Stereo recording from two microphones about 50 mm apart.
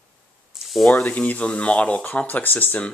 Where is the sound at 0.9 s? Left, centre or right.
Left.